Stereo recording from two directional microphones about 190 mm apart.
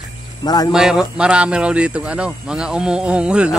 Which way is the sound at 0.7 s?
5° right (ahead or behind).